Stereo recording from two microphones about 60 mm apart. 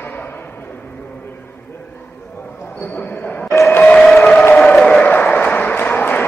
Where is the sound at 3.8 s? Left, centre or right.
Left.